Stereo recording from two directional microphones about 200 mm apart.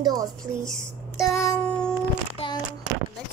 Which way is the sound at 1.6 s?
5° left (ahead or behind).